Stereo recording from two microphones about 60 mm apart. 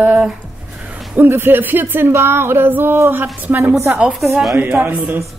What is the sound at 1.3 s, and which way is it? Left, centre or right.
Speech, right.